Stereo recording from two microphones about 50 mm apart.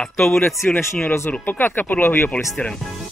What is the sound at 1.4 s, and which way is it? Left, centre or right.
Speech, left.